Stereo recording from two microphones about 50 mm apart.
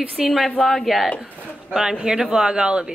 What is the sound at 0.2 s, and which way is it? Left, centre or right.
Speech, centre.